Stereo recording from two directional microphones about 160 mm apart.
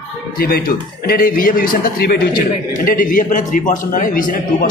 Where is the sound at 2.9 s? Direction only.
55° left (ahead or behind).